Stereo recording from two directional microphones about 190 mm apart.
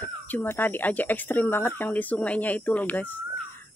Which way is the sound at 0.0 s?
10° left (ahead or behind).